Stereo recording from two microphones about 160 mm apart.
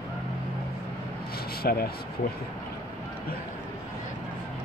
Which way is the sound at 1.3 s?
70° left (ahead or behind).